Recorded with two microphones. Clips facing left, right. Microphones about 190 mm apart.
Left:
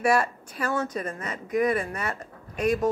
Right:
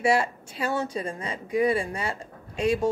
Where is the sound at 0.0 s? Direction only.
25° right (ahead or behind).